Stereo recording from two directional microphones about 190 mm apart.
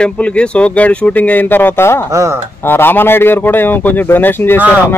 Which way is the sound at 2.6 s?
10° left (ahead or behind).